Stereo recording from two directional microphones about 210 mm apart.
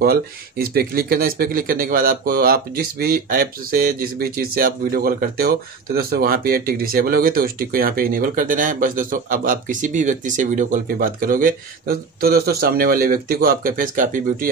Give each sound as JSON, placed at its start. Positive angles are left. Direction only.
{"t": 0.0, "sound": "speech", "side_deg": -45}